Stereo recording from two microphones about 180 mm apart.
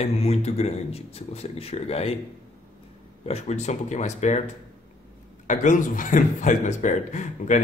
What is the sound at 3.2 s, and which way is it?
A man's voice, 35° left (ahead or behind).